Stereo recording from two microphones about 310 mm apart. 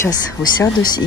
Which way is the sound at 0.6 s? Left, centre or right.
Centre.